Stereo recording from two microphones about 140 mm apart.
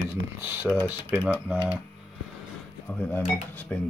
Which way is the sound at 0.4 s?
15° right (ahead or behind).